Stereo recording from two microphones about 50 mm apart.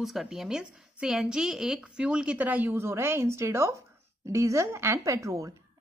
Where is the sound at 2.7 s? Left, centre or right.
Right.